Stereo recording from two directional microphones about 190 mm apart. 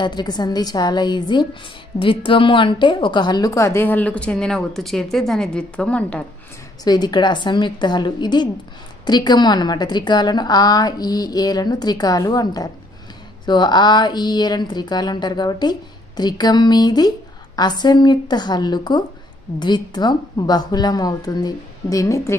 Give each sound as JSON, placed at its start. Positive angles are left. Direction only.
{"t": 0.0, "sound": "a woman's voice", "side_deg": 20}
{"t": 6.8, "sound": "a woman's voice", "side_deg": 20}